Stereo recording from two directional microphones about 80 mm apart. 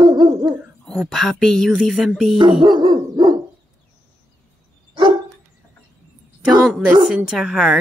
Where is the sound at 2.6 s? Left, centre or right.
Right.